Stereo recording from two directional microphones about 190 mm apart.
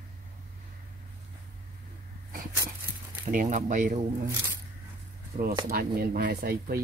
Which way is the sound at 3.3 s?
45° right (ahead or behind).